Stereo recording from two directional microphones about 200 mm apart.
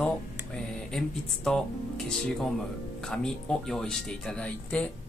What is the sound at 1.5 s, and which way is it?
Speech, 5° left (ahead or behind).